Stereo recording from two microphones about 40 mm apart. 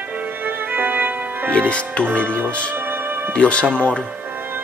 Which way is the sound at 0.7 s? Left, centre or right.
Right.